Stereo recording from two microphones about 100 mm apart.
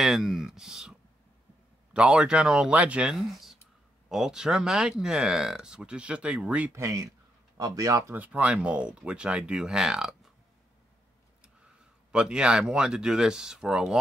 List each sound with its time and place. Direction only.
0.0 s speech: 5° right (ahead or behind)
2.0 s speech: 10° right (ahead or behind)
6.7 s speech: 30° right (ahead or behind)
8.1 s speech: 15° right (ahead or behind)
11.4 s speech: 10° right (ahead or behind)